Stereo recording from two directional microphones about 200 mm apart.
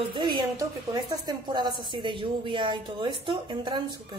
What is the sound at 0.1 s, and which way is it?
A woman's voice, 25° right (ahead or behind).